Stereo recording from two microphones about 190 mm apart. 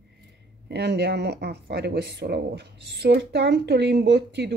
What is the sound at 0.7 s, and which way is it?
Speech, 60° right (ahead or behind).